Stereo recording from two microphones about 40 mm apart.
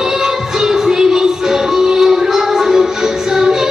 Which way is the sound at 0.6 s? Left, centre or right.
Centre.